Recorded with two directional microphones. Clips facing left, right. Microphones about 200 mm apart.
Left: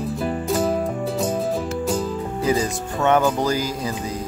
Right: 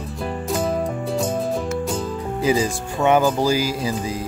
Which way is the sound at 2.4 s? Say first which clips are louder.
Right 2 dB; 10° right (ahead or behind).